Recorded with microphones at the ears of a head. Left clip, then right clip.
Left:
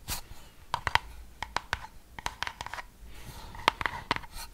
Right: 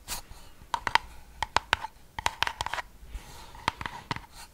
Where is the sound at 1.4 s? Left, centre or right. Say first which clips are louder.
Right 7 dB; right.